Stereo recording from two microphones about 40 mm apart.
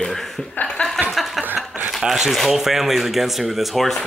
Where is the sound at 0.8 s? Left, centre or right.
Left.